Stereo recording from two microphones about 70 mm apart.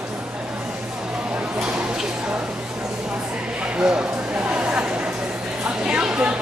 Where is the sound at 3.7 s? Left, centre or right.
Centre.